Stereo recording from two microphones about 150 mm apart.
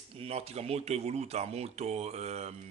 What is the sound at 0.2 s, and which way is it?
Speech, 45° right (ahead or behind).